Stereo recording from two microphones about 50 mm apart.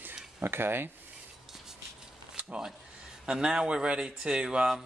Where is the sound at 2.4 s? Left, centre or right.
Right.